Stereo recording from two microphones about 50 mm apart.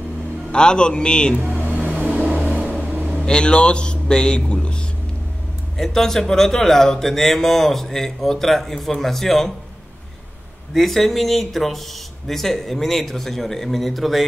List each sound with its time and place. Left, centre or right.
0.5 s speech: centre
1.5 s vehicle: right
3.3 s a man's voice: centre
5.8 s speech: centre
10.7 s speech: centre